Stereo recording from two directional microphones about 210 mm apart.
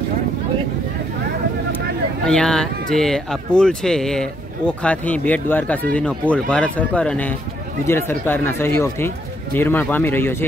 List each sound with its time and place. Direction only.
2.2 s speech: 5° left (ahead or behind)